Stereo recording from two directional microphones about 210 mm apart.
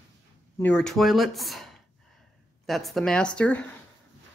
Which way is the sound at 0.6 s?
5° left (ahead or behind).